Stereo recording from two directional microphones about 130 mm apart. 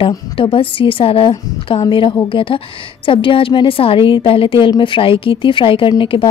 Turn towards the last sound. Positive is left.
turn(degrees=40)  # may be behind; listen again after turning